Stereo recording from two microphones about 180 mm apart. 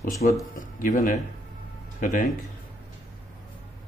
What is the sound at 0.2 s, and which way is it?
Speech, 50° left (ahead or behind).